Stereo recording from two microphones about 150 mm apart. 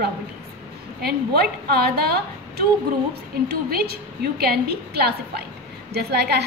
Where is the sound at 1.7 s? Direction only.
90° right.